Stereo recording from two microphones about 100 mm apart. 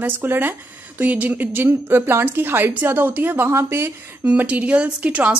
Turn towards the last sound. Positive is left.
turn(degrees=-15)  # may be behind; listen again after turning